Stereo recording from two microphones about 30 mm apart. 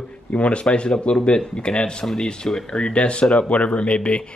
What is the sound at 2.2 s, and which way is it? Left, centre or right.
Speech, left.